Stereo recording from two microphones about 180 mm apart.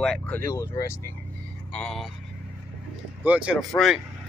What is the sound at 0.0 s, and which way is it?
Speech, 5° left (ahead or behind).